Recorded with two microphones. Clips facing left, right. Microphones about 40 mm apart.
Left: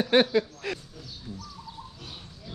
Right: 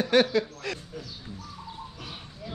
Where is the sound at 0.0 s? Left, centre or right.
Centre.